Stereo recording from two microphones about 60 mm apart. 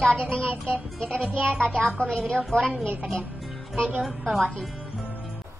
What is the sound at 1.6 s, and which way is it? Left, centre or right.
Speech, centre.